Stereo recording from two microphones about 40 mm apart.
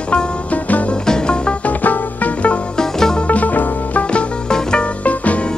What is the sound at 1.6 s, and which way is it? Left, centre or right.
Music, left.